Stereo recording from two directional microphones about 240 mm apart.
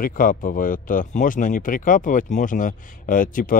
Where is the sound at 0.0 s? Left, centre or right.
Left.